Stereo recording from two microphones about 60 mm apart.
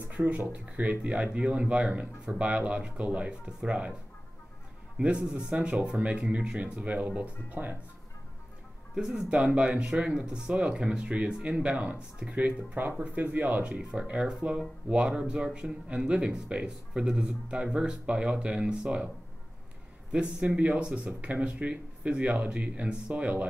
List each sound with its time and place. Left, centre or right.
0.1 s a sound: right
0.5 s speech: right
4.9 s speech: centre
8.9 s speech: centre
13.7 s speech: centre
20.1 s speech: centre